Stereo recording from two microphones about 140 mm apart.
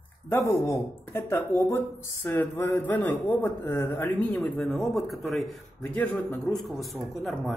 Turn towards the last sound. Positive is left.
turn(degrees=0)  # may be behind; listen again after turning